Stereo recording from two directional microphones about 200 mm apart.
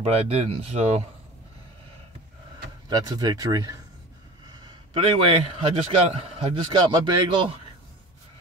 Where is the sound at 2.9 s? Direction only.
20° right (ahead or behind).